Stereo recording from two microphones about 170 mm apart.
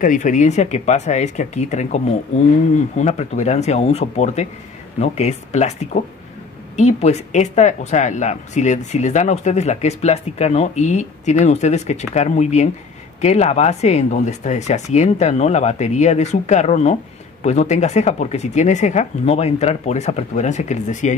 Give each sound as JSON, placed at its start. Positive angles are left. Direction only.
{"t": 0.0, "sound": "speech", "side_deg": 50}
{"t": 3.0, "sound": "speech", "side_deg": 45}
{"t": 6.8, "sound": "speech", "side_deg": 40}